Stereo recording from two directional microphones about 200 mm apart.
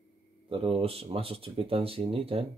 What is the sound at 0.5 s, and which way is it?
Speech, 25° right (ahead or behind).